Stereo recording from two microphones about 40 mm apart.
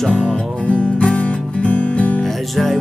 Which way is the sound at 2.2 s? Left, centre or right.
Centre.